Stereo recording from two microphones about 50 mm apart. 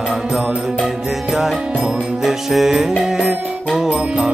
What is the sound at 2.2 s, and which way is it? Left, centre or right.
Music, centre.